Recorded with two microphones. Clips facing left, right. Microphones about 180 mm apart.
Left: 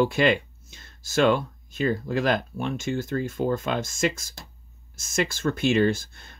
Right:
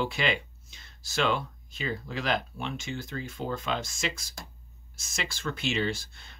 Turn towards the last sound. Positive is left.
turn(degrees=50)  # may be behind; listen again after turning